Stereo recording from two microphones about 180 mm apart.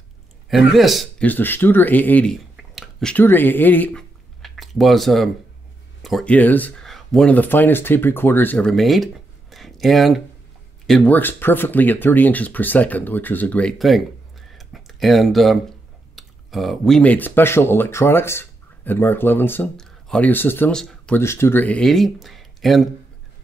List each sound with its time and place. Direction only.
0.5 s speech: centre (ahead or behind)
1.3 s speech: 10° left (ahead or behind)
14.5 s computer keyboard: centre (ahead or behind)
16.2 s speech: centre (ahead or behind)